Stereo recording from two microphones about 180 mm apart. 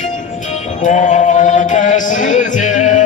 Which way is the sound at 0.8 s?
40° left (ahead or behind).